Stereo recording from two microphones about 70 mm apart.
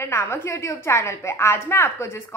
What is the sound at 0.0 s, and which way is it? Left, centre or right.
A woman's voice, left.